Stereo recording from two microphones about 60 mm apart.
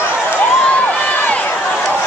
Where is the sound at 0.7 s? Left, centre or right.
Left.